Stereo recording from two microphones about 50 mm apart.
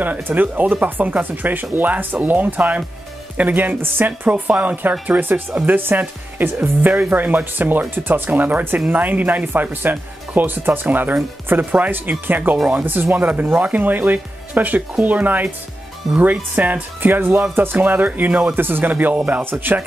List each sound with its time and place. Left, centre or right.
0.0 s speech: right
18.5 s speech: right